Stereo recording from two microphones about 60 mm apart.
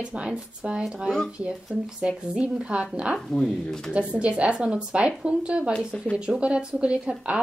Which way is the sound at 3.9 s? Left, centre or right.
Centre.